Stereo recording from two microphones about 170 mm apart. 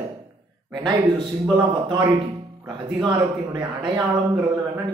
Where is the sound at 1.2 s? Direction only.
30° right (ahead or behind).